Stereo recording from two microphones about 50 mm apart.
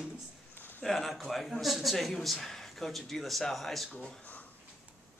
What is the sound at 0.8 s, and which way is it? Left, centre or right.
Speech, centre.